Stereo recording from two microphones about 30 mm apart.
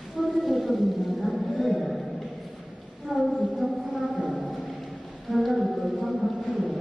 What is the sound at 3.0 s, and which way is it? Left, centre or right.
Speech, centre.